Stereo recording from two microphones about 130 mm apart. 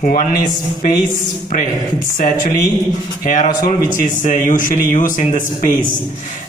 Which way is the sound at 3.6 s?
80° left.